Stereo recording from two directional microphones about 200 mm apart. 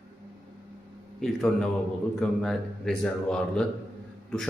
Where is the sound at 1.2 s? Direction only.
Centre (ahead or behind).